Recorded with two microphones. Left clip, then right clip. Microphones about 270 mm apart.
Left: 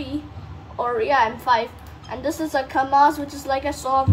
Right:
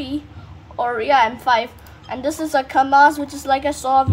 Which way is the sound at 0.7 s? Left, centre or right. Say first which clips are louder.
Right 3 dB; right.